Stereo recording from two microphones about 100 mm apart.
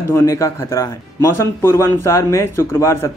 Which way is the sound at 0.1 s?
30° left (ahead or behind).